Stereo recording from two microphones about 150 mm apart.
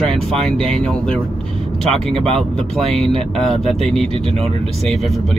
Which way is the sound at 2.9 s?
Centre (ahead or behind).